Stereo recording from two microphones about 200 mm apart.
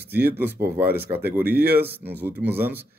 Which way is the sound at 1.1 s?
10° right (ahead or behind).